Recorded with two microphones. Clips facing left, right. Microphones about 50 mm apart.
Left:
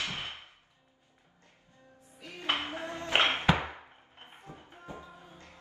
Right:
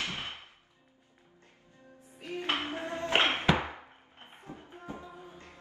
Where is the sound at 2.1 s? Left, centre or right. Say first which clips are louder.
Even; right.